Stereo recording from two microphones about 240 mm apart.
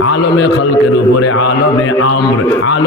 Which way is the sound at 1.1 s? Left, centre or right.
Left.